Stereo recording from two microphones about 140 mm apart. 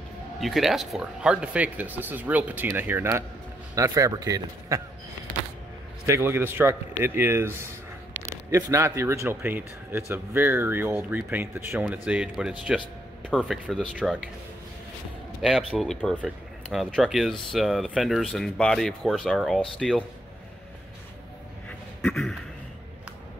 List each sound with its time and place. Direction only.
0.4 s speech: centre (ahead or behind); by 4.8 s 25° right (ahead or behind)
6.0 s speech: 15° right (ahead or behind); by 14.1 s centre (ahead or behind)
15.4 s speech: centre (ahead or behind)
21.6 s a sound: 5° left (ahead or behind)